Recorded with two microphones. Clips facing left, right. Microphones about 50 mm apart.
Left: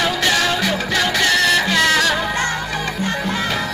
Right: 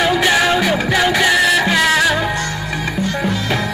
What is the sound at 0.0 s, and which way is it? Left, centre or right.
Music, centre.